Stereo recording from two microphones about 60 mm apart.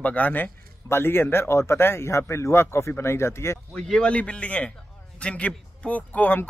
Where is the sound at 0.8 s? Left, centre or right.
Left.